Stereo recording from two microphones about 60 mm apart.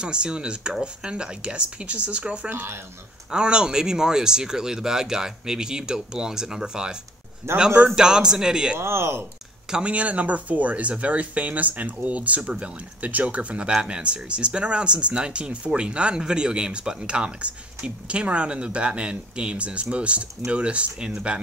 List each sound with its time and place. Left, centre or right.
0.0 s speech: centre
2.5 s speech: right
3.3 s speech: centre
7.5 s speech: right
7.9 s speech: centre
8.7 s speech: right
9.7 s speech: centre